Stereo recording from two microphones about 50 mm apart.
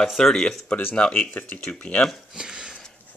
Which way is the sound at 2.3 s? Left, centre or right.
Centre.